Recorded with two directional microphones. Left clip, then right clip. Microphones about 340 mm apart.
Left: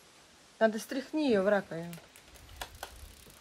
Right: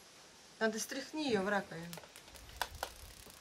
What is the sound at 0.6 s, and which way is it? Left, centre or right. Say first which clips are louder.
Speech: left 7 dB; centre.